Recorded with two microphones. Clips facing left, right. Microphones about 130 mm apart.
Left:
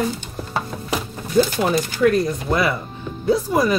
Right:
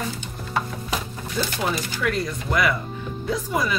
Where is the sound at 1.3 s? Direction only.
50° left (ahead or behind).